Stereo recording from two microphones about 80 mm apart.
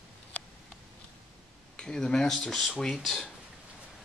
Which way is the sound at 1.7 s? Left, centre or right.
Centre.